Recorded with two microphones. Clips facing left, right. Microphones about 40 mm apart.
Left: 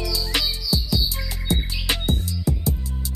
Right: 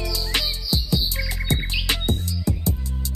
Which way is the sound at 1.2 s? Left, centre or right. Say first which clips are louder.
Even; centre.